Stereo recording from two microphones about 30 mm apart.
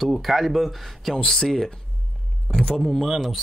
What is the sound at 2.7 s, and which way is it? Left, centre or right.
Speech, centre.